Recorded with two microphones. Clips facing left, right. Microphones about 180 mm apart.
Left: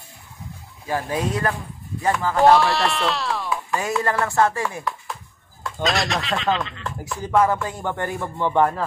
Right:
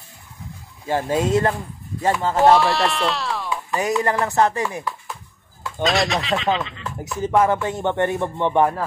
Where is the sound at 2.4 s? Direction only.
Centre (ahead or behind).